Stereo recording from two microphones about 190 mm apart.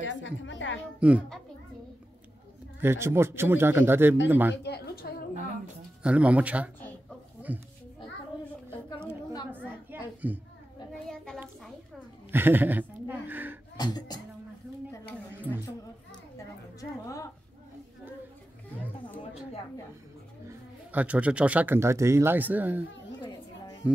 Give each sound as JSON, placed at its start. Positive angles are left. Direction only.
{"t": 0.0, "sound": "a woman's voice", "side_deg": 75}
{"t": 0.9, "sound": "a man's voice", "side_deg": -5}
{"t": 2.8, "sound": "a man's voice", "side_deg": -15}
{"t": 4.6, "sound": "a sound", "side_deg": 55}
{"t": 6.0, "sound": "a man's voice", "side_deg": -5}
{"t": 9.5, "sound": "a sound", "side_deg": -10}
{"t": 10.2, "sound": "a man's voice", "side_deg": -10}
{"t": 12.3, "sound": "a sound", "side_deg": -10}
{"t": 13.7, "sound": "speech", "side_deg": 20}
{"t": 20.4, "sound": "speech", "side_deg": -10}